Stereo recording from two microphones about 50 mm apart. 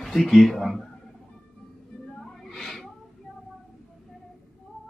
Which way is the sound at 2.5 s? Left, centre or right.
Centre.